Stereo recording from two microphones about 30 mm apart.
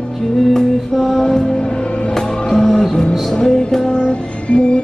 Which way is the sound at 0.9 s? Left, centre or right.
Centre.